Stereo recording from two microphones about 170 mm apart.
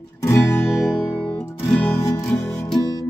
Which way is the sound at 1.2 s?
10° left (ahead or behind).